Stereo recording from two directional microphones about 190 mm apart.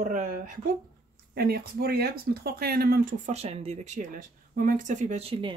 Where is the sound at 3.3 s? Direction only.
35° right (ahead or behind).